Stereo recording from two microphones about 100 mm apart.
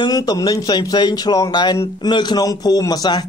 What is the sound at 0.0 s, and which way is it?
A man's voice, 40° left (ahead or behind).